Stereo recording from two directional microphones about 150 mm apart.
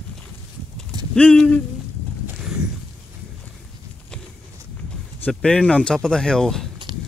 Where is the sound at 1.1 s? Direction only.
5° left (ahead or behind).